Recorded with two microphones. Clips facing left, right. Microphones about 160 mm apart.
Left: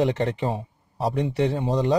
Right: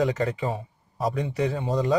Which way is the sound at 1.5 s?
30° left (ahead or behind).